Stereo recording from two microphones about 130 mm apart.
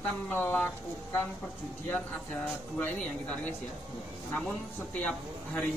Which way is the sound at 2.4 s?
10° left (ahead or behind).